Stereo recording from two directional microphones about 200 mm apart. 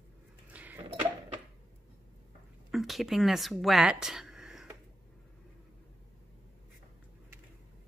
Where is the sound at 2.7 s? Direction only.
Centre (ahead or behind).